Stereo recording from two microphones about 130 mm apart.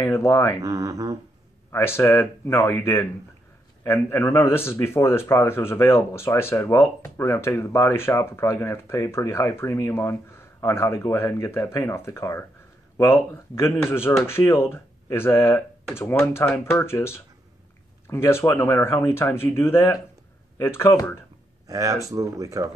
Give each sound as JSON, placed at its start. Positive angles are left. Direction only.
{"t": 0.0, "sound": "speech", "side_deg": 20}
{"t": 0.6, "sound": "speech", "side_deg": -25}
{"t": 1.7, "sound": "a man's voice", "side_deg": 20}
{"t": 21.6, "sound": "speech", "side_deg": -25}